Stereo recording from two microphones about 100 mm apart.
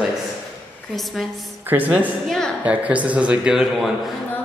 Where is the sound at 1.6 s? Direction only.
15° right (ahead or behind).